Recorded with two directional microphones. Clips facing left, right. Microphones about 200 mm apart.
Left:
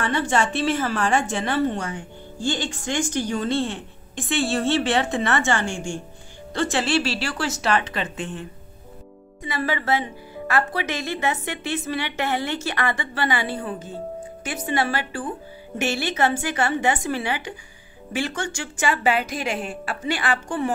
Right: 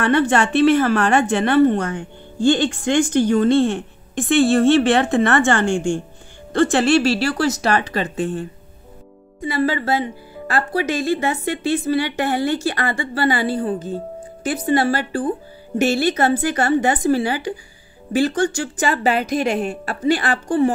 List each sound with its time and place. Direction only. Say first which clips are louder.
0.0 s a woman's voice: right 6 dB; 60° right (ahead or behind); by 8.5 s 40° right (ahead or behind)
9.5 s a woman's voice: right 5 dB; 30° right (ahead or behind)